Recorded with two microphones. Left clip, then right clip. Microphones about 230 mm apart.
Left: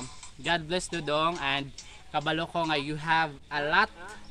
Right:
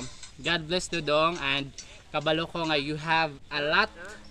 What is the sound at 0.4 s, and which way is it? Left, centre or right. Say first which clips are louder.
A man's voice: right 1 dB; centre.